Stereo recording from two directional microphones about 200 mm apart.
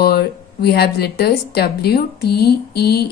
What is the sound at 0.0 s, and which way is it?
A woman's voice, 55° left (ahead or behind).